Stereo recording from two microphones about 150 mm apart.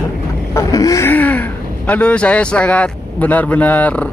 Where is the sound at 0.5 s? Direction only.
20° left (ahead or behind).